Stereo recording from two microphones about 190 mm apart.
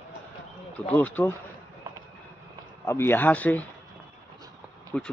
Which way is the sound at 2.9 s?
10° left (ahead or behind).